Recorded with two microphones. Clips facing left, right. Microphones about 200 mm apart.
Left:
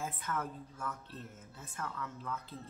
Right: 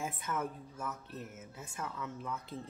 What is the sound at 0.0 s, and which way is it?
Speech, 10° right (ahead or behind).